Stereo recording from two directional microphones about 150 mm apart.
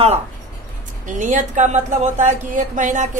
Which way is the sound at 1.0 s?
55° right (ahead or behind).